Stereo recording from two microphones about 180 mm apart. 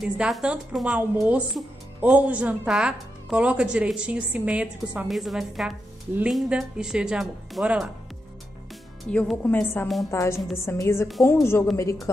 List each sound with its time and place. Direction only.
0.0 s speech: 5° right (ahead or behind)
9.1 s speech: 5° left (ahead or behind)